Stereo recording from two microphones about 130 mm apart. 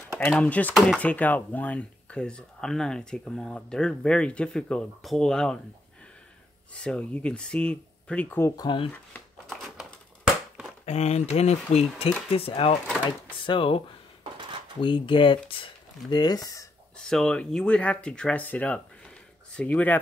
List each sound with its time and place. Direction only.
0.3 s speech: 10° left (ahead or behind)
6.7 s speech: 10° left (ahead or behind)
8.5 s speech: 35° left (ahead or behind)
9.5 s a sound: centre (ahead or behind)
10.9 s speech: 55° left (ahead or behind); by 16.6 s 30° left (ahead or behind)
16.9 s speech: 5° left (ahead or behind)